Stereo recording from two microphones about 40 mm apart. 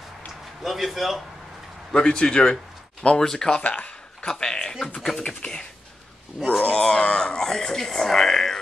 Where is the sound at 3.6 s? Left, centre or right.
Left.